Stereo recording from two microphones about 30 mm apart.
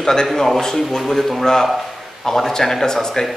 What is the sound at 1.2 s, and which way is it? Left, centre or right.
Speech, centre.